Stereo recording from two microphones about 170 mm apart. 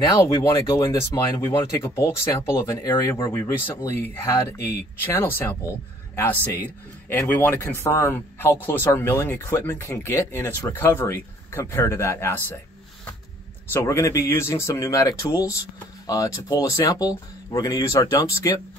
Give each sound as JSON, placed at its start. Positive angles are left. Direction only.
{"t": 0.1, "sound": "speech", "side_deg": 20}
{"t": 13.8, "sound": "speech", "side_deg": 15}